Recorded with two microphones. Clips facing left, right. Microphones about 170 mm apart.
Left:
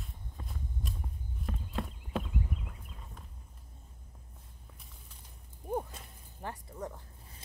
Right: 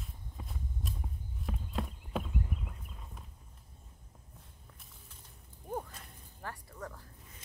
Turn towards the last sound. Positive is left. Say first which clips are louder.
# left 4 dB
turn(degrees=20)  # may be behind; listen again after turning